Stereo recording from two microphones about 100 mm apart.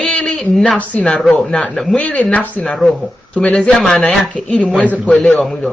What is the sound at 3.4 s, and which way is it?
Speech, 15° left (ahead or behind).